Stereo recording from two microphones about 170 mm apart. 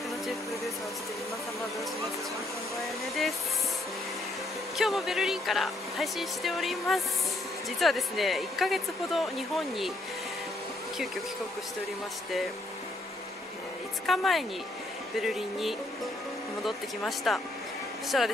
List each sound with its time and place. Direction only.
2.8 s a sound: centre (ahead or behind)
4.7 s speech: centre (ahead or behind)
14.0 s speech: centre (ahead or behind)